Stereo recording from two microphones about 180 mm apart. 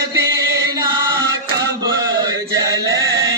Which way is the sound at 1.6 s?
20° right (ahead or behind).